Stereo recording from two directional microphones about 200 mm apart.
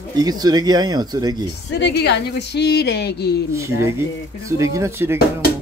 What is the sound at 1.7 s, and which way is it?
A woman's voice, 60° left (ahead or behind).